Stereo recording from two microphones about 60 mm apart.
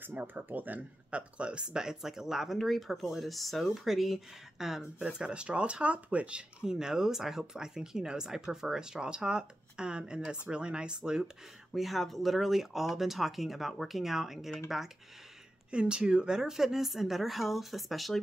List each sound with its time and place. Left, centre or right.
0.0 s speech: right; by 4.8 s centre
4.9 s speech: centre
11.7 s speech: centre
15.7 s speech: centre